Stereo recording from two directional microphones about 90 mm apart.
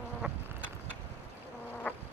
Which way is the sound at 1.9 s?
15° left (ahead or behind).